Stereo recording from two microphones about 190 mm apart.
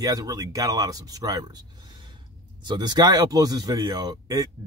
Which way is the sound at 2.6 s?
20° right (ahead or behind).